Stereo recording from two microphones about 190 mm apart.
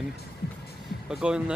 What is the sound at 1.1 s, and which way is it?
Speech, 5° right (ahead or behind).